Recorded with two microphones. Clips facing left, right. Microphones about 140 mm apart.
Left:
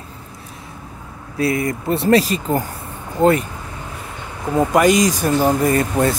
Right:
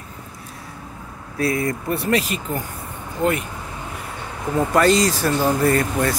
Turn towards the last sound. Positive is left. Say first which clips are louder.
# left 2 dB
turn(degrees=20)  # may be behind; listen again after turning